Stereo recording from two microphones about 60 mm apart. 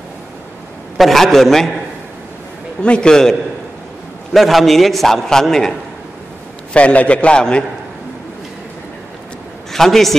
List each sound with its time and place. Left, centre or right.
0.9 s a man's voice: centre
2.8 s a man's voice: centre
6.7 s a man's voice: left
9.7 s a man's voice: centre